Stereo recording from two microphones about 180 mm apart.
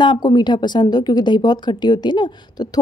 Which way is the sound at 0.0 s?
25° left (ahead or behind).